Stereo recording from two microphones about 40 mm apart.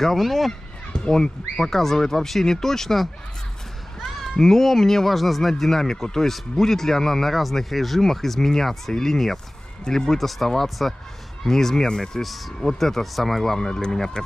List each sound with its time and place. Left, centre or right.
0.0 s speech: centre
1.0 s speech: centre
12.2 s speech: centre